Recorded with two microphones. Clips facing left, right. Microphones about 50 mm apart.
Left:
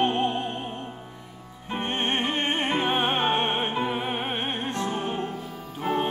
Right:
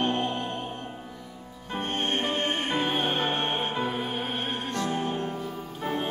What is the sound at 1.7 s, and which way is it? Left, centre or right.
Music, left.